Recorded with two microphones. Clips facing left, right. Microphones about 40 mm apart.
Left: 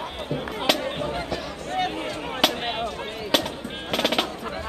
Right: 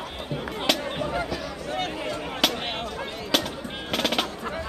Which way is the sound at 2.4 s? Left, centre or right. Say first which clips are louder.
Left 3 dB; centre.